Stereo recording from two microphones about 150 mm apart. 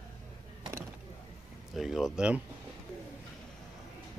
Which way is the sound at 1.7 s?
Centre (ahead or behind).